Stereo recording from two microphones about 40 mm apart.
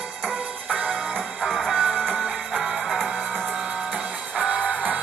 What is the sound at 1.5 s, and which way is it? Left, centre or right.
Music, centre.